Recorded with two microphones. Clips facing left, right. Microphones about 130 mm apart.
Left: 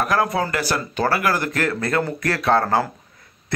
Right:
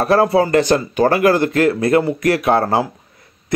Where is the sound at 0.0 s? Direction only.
30° right (ahead or behind).